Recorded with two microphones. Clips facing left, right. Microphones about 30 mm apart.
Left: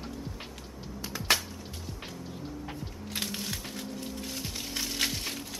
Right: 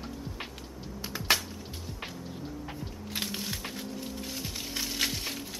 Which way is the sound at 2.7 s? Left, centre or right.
Centre.